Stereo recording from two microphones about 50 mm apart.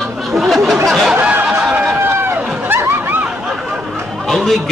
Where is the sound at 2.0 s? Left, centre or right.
Right.